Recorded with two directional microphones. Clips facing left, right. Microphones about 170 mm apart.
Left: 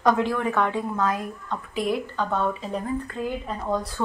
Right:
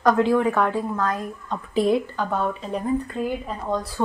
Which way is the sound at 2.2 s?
5° right (ahead or behind).